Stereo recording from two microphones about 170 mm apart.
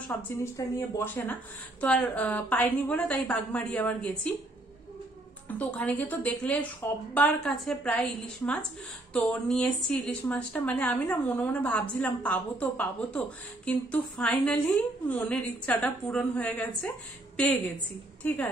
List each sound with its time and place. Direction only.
0.4 s speech: 15° left (ahead or behind)
5.5 s a woman's voice: 10° left (ahead or behind)